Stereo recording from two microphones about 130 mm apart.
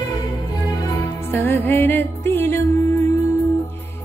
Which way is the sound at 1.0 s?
20° left (ahead or behind).